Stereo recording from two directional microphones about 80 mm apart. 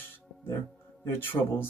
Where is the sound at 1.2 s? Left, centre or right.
Left.